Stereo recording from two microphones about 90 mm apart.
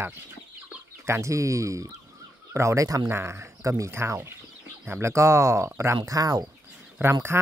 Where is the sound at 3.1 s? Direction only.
30° right (ahead or behind).